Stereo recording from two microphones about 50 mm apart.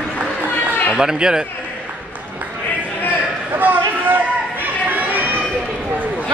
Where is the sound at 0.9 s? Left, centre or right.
Centre.